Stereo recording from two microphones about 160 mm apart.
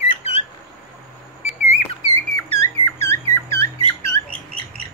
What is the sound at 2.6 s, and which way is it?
Squeak, 15° left (ahead or behind).